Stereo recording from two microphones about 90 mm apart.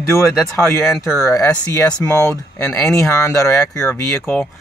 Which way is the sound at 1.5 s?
10° left (ahead or behind).